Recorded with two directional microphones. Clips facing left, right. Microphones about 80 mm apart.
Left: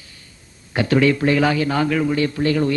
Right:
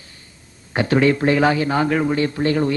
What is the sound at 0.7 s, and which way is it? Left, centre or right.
A man's voice, right.